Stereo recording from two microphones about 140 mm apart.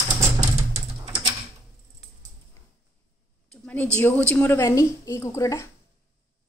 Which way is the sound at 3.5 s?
10° left (ahead or behind).